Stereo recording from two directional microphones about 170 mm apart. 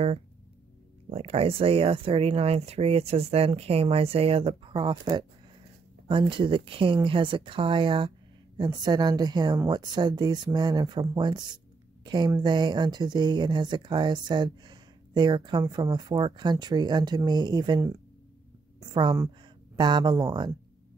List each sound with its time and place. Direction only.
1.1 s a woman's voice: 35° right (ahead or behind)